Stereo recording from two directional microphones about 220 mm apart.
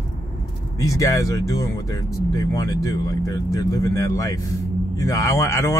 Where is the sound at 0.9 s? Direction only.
15° left (ahead or behind).